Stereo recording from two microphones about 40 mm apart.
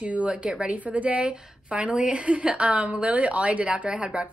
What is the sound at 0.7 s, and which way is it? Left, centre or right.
A woman's voice, right.